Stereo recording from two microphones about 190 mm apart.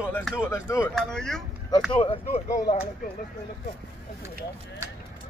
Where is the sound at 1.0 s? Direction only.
5° left (ahead or behind).